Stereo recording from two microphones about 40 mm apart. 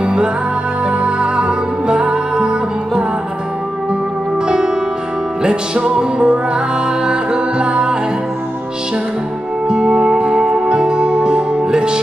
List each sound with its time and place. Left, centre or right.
0.0 s music: right
4.5 s music: centre
9.7 s music: centre